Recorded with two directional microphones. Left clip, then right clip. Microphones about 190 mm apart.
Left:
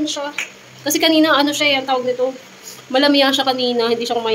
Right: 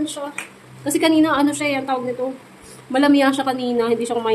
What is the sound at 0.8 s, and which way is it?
Speech, 5° right (ahead or behind).